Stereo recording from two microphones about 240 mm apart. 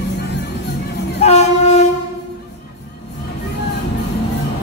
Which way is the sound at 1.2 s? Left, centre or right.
Left.